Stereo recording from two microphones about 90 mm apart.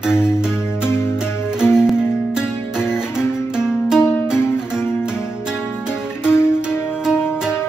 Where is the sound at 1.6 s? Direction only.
30° left (ahead or behind).